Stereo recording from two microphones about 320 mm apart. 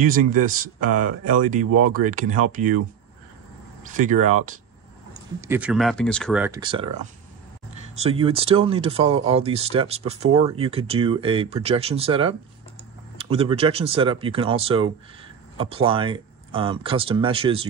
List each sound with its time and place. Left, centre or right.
0.0 s speech: right
1.7 s speech: right
2.0 s speech: right
3.8 s speech: right
5.5 s speech: centre